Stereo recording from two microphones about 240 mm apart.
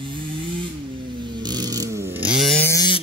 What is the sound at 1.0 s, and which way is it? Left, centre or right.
Vehicle, centre.